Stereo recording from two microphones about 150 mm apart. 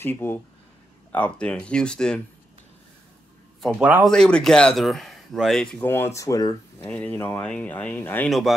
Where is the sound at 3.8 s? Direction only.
10° right (ahead or behind).